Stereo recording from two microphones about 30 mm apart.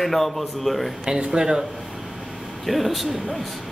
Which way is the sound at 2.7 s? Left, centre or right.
Centre.